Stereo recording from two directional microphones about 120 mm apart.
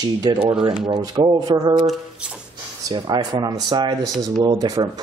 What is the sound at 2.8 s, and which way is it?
Speech, 40° right (ahead or behind).